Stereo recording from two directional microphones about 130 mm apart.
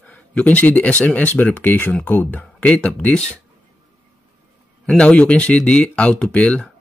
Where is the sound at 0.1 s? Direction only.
10° left (ahead or behind).